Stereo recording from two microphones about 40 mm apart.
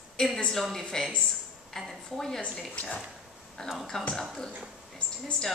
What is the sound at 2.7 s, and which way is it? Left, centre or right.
Speech, left.